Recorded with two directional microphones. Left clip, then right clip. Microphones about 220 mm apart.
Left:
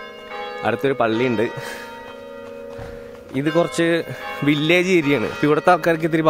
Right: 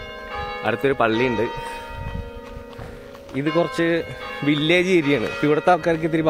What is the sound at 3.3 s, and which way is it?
Speech, 20° left (ahead or behind).